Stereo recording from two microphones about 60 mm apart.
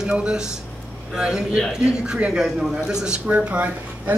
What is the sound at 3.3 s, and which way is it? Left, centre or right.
Speech, right.